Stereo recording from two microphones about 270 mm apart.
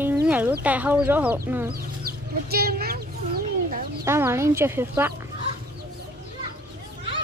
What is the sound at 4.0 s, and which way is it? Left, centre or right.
Speech, centre.